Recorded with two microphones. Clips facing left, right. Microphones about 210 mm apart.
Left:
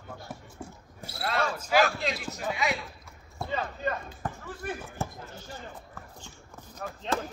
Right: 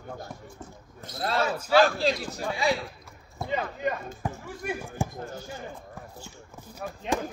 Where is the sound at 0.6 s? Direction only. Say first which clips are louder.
Left 1 dB; 10° left (ahead or behind).